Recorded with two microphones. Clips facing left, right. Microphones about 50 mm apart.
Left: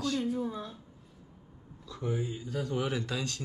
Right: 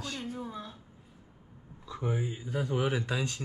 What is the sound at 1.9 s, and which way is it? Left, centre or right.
Speech, centre.